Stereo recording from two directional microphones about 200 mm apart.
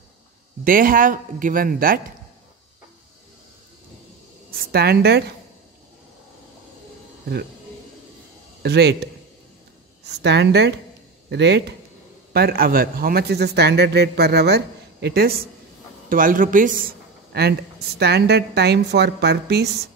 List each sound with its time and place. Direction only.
0.7 s a man's voice: 45° right (ahead or behind)
4.5 s a woman's voice: 50° right (ahead or behind)
8.6 s a man's voice: 55° right (ahead or behind)